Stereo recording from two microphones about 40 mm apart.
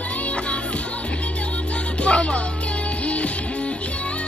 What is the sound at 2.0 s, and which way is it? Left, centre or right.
Music, left.